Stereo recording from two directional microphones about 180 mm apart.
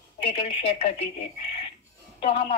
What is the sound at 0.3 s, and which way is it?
Speech, 35° left (ahead or behind).